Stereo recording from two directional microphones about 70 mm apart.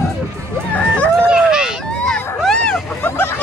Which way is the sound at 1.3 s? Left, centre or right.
Centre.